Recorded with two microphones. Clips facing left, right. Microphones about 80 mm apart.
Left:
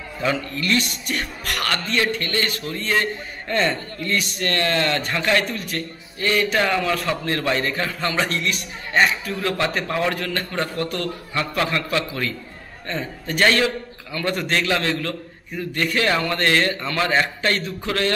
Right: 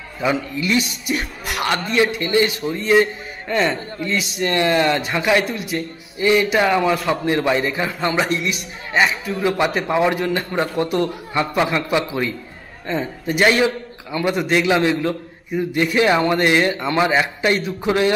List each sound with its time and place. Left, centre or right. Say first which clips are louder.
0.2 s a man's voice: right 3 dB; centre
4.6 s a man's voice: right 5 dB; centre
8.4 s a man's voice: right 1 dB; centre